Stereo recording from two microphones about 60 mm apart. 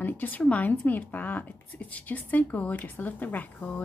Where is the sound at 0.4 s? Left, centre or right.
Left.